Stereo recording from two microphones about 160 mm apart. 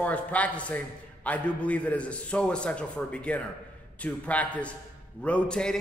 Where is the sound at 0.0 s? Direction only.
10° left (ahead or behind).